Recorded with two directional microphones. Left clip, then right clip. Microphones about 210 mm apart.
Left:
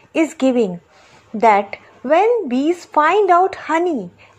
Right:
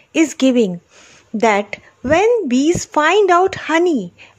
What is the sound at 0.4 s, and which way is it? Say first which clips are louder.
Speech: right 2 dB; 30° right (ahead or behind).